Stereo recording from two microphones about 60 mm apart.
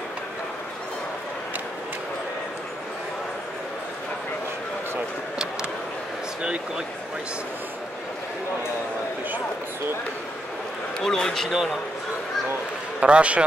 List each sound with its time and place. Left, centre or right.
11.0 s speech: centre
13.0 s a man's voice: centre